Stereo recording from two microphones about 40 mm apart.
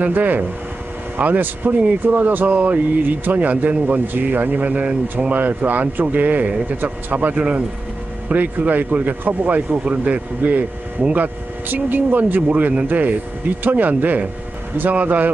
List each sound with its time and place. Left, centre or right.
0.0 s speech: right
2.5 s a man's voice: right
11.1 s a man's voice: right